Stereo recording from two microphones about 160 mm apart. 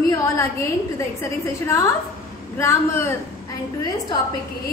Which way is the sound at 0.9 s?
20° left (ahead or behind).